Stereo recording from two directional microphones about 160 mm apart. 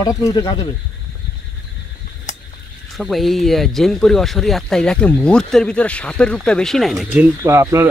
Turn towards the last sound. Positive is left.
turn(degrees=-20)  # may be behind; listen again after turning